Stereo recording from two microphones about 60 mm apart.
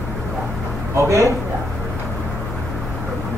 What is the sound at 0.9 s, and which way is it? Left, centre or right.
Speech, right.